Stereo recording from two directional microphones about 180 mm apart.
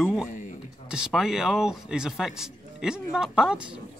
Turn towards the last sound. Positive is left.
turn(degrees=-5)  # may be behind; listen again after turning